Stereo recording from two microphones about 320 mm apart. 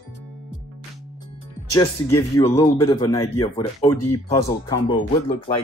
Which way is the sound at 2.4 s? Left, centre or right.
Centre.